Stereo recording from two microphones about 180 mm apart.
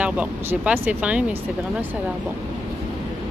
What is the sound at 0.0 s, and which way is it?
Speech, 5° right (ahead or behind).